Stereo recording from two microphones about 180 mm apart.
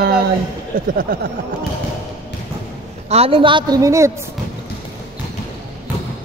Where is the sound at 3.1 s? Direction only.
35° right (ahead or behind); by 4.1 s 15° right (ahead or behind).